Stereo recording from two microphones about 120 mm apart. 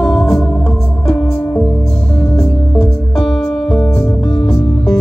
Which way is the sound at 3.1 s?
5° left (ahead or behind).